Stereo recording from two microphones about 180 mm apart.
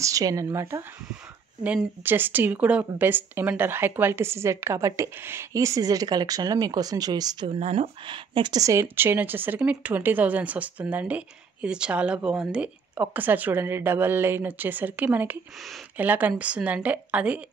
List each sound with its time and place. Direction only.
0.0 s a woman's voice: 20° right (ahead or behind)